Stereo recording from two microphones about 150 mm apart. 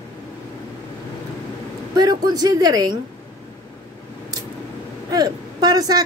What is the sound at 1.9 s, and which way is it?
A woman's voice, 25° right (ahead or behind).